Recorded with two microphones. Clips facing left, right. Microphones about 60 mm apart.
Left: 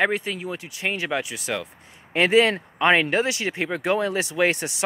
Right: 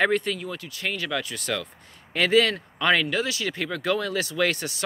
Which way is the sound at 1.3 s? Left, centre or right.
Centre.